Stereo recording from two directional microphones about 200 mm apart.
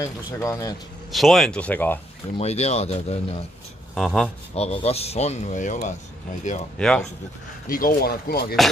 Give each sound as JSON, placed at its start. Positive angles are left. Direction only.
{"t": 0.0, "sound": "speech", "side_deg": 15}
{"t": 1.1, "sound": "speech", "side_deg": 0}
{"t": 2.3, "sound": "speech", "side_deg": 35}
{"t": 3.9, "sound": "speech", "side_deg": 0}
{"t": 4.6, "sound": "speech", "side_deg": 30}
{"t": 6.8, "sound": "speech", "side_deg": 5}
{"t": 7.6, "sound": "speech", "side_deg": 45}